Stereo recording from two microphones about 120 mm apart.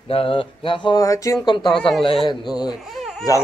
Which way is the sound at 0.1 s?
50° left (ahead or behind).